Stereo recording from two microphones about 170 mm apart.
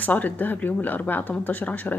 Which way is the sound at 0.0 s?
10° left (ahead or behind).